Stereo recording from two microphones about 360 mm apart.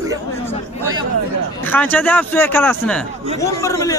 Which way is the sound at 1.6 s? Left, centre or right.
Centre.